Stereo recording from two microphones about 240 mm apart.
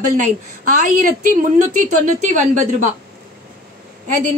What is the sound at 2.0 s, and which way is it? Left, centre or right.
Speech, right.